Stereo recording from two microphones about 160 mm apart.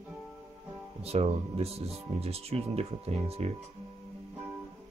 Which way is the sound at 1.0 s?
40° right (ahead or behind).